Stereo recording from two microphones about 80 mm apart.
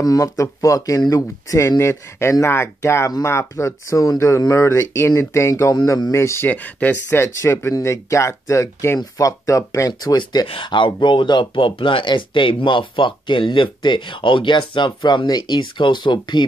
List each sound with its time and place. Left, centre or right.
0.0 s speech: left
6.5 s speech: left
7.4 s speech: left
10.1 s speech: left